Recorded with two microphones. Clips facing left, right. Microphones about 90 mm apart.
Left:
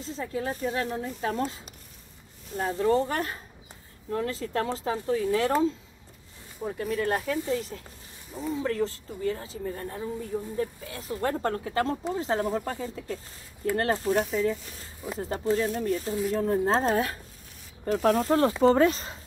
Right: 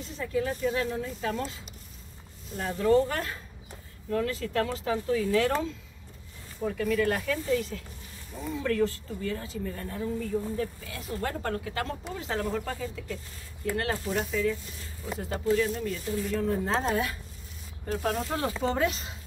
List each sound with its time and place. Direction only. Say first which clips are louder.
0.0 s speech: right 1 dB; 30° left (ahead or behind)
6.6 s speech: right 2 dB; 30° left (ahead or behind)
15.0 s speech: left 1 dB; 10° left (ahead or behind)
15.4 s speech: even; 35° left (ahead or behind)
17.8 s speech: left 6 dB; 55° left (ahead or behind)
18.2 s speech: left 8 dB; 40° left (ahead or behind)